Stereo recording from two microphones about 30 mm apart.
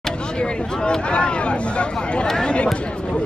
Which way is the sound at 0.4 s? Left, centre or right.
Left.